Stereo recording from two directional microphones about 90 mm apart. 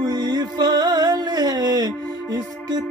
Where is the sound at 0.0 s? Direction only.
50° right (ahead or behind).